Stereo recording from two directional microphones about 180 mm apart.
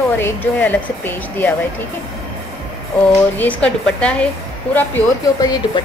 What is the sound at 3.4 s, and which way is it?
A woman's voice, 5° left (ahead or behind).